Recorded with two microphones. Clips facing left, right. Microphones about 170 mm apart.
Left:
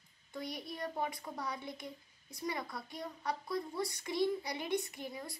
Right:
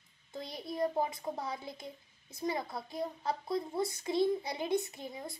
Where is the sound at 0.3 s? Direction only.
25° right (ahead or behind).